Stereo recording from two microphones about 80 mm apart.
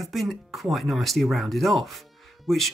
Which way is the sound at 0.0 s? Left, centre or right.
Centre.